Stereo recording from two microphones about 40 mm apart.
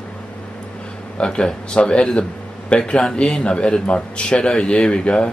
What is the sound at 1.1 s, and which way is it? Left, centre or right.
Speech, left.